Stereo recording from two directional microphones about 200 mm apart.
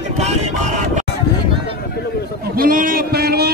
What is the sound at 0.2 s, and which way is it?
Music, 35° right (ahead or behind).